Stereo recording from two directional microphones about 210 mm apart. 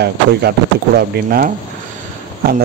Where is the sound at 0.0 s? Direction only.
50° right (ahead or behind).